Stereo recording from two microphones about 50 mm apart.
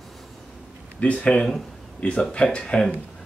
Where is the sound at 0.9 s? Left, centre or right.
Left.